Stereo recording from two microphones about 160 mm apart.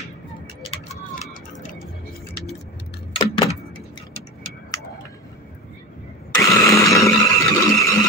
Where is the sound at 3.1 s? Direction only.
35° left (ahead or behind).